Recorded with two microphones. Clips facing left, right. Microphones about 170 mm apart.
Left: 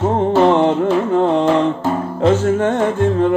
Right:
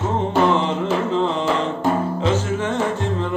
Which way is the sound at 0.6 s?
55° left (ahead or behind).